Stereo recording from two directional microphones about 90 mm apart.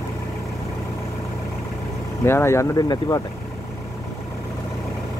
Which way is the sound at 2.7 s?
45° left (ahead or behind).